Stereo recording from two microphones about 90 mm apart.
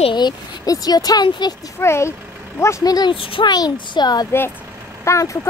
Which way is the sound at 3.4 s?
50° left (ahead or behind).